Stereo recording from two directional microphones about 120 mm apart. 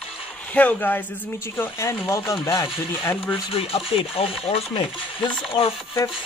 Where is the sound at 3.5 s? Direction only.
50° left (ahead or behind).